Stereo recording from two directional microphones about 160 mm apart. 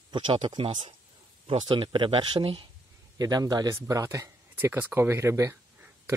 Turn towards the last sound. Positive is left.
turn(degrees=-20)  # may be behind; listen again after turning